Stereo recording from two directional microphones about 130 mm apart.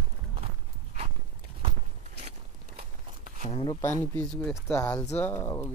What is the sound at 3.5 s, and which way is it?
Speech, 40° left (ahead or behind).